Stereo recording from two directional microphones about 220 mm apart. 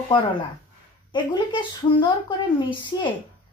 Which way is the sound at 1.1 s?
20° left (ahead or behind).